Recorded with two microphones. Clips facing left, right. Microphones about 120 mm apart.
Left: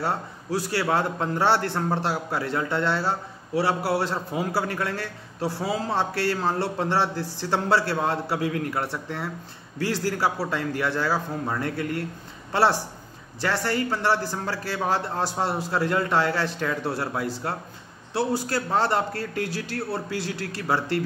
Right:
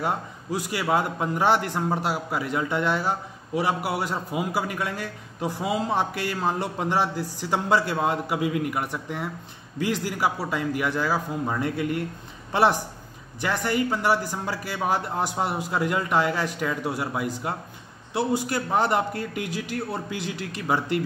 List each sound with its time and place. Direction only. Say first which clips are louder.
0.0 s a man's voice: even; 15° right (ahead or behind)